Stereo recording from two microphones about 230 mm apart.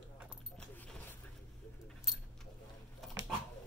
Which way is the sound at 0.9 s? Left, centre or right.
Centre.